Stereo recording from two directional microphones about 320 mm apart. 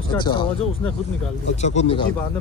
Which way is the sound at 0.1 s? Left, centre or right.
Centre.